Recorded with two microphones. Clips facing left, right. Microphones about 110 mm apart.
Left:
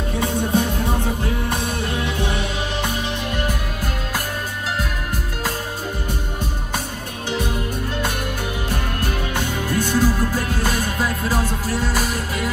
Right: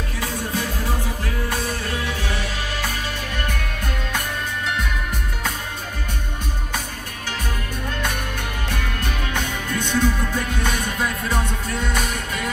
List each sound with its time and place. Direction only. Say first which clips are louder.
0.5 s music: left 5 dB; 25° left (ahead or behind)
8.6 s music: left 2 dB; 10° left (ahead or behind)